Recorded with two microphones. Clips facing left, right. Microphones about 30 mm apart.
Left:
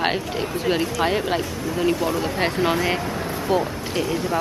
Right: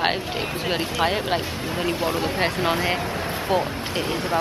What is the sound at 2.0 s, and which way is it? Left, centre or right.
Speech, right.